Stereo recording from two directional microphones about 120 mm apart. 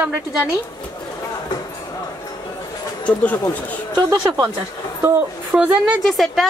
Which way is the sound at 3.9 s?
35° right (ahead or behind).